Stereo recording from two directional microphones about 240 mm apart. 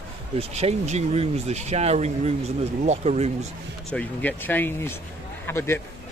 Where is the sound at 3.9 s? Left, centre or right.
Centre.